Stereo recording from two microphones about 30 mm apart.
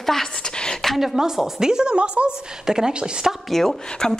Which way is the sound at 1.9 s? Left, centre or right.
Right.